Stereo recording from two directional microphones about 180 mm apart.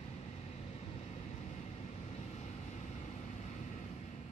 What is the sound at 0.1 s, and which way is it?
Vehicle, 35° left (ahead or behind).